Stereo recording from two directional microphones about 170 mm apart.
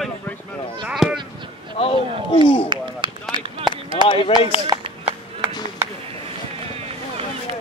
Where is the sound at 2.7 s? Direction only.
25° right (ahead or behind).